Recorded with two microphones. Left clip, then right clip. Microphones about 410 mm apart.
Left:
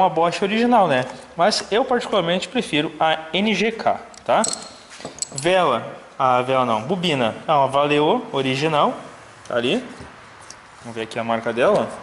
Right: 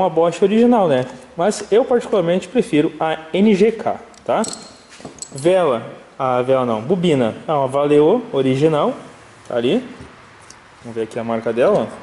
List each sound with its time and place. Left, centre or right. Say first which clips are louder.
0.2 s speech: right 5 dB; centre
8.0 s speech: right 4 dB; centre
8.4 s speech: right 3 dB; centre
10.9 s speech: right 1 dB; centre